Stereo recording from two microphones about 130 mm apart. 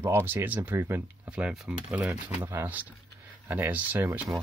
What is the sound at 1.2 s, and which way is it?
Speech, 10° right (ahead or behind).